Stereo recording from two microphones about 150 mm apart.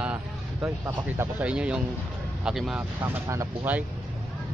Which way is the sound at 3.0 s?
20° right (ahead or behind).